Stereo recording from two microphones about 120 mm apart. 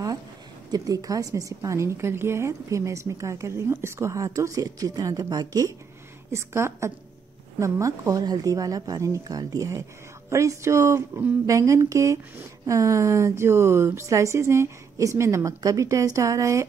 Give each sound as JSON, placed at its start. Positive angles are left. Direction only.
{"t": 0.7, "sound": "speech", "side_deg": -30}